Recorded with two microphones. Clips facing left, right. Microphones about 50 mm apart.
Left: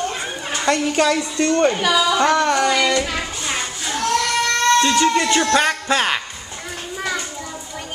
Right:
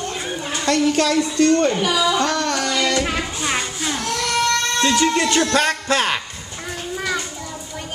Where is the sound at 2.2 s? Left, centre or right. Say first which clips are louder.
Left 4 dB; left.